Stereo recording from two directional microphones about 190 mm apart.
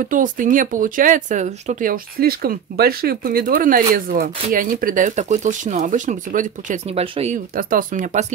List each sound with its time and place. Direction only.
0.0 s speech: 45° right (ahead or behind)
7.5 s speech: 45° right (ahead or behind)